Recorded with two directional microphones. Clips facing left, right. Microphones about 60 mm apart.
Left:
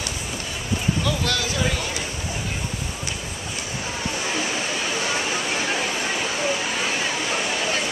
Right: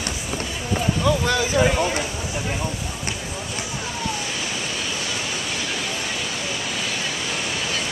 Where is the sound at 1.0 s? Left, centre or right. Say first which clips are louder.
Right 4 dB; centre.